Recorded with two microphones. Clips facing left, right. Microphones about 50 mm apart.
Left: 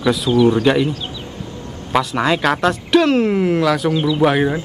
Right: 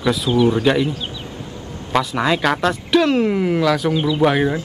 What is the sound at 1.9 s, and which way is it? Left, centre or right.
Speech, centre.